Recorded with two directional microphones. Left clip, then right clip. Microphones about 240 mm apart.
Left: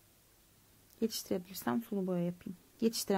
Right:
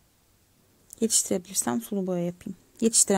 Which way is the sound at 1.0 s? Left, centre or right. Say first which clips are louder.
Right 10 dB; right.